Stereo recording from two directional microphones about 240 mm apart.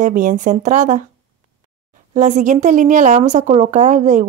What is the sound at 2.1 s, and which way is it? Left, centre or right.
Speech, right.